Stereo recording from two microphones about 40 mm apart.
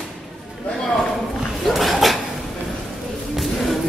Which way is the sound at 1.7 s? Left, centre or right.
Centre.